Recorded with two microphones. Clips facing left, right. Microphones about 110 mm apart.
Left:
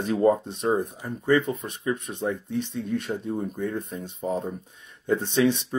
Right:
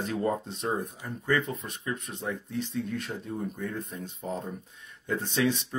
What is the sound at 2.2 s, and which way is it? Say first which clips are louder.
Speech: left 5 dB; 25° left (ahead or behind).